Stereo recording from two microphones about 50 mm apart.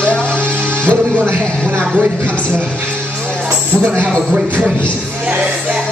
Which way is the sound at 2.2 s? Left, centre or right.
Left.